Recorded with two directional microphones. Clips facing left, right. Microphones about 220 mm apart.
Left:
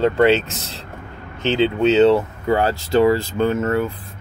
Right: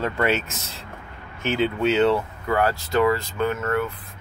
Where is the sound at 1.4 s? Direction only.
25° left (ahead or behind).